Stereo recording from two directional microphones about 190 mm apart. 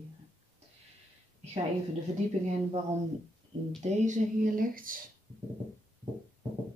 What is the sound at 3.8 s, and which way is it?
Speech, 40° right (ahead or behind).